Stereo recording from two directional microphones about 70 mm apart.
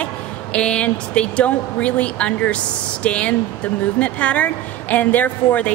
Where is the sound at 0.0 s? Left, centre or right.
Centre.